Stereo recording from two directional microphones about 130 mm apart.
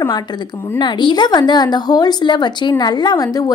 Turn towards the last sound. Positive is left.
turn(degrees=30)  # may be behind; listen again after turning